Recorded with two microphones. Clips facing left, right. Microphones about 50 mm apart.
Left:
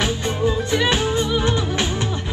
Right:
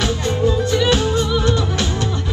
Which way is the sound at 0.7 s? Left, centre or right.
Left.